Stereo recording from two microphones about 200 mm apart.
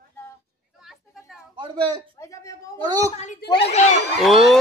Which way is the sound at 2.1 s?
15° left (ahead or behind).